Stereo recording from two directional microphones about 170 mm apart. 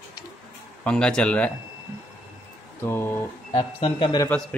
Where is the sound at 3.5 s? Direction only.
30° left (ahead or behind).